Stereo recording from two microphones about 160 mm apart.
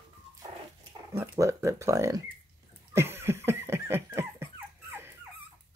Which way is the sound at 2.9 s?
15° right (ahead or behind).